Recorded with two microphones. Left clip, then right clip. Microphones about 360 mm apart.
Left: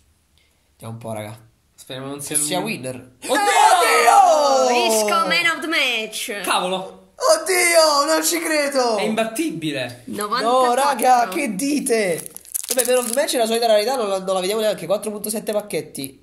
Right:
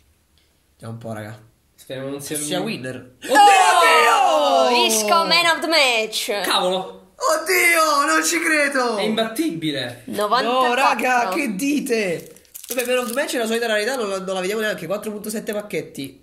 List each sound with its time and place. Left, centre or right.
1.9 s speech: centre
2.4 s speech: centre
3.8 s a sound: centre
4.7 s a woman's voice: centre
6.4 s speech: centre
7.2 s speech: centre
9.1 s speech: centre
10.5 s speech: centre